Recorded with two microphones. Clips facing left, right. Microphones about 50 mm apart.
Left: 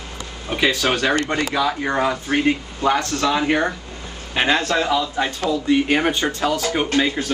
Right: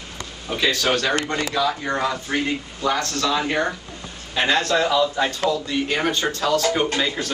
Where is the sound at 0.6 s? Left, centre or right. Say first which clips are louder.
Left 2 dB; centre.